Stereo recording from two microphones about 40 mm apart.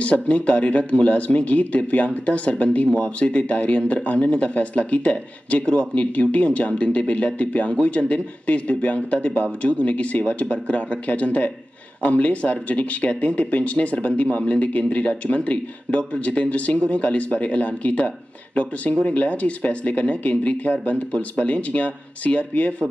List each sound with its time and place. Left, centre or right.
0.0 s a man's voice: left